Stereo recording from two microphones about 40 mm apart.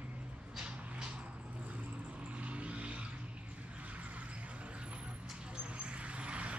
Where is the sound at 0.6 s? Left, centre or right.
Centre.